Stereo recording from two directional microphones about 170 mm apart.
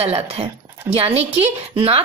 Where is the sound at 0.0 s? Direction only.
35° right (ahead or behind).